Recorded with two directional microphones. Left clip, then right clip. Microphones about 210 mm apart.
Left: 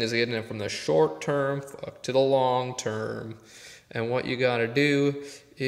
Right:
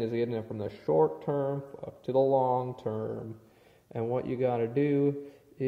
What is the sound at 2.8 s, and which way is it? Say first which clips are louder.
Speech: left 3 dB; 20° left (ahead or behind).